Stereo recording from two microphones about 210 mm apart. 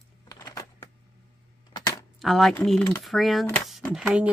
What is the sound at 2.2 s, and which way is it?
Speech, centre (ahead or behind).